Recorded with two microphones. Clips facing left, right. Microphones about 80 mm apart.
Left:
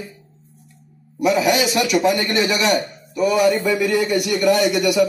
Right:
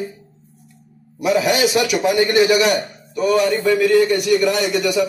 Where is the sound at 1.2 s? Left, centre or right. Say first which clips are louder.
Even; centre.